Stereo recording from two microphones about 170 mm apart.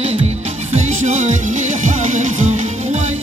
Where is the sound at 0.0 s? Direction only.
40° right (ahead or behind).